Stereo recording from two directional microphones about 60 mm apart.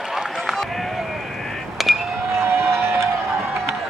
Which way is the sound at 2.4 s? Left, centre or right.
Right.